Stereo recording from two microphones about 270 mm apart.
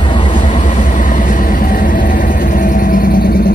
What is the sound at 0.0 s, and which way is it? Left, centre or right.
Vehicle, centre.